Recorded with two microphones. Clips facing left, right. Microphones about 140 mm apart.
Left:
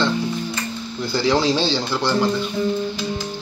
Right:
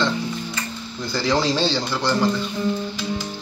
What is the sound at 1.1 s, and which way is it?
Speech, 25° left (ahead or behind).